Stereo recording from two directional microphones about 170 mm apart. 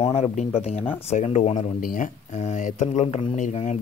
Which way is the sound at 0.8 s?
10° left (ahead or behind).